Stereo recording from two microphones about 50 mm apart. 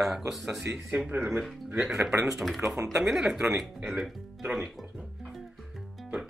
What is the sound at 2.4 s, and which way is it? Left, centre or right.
Speech, centre.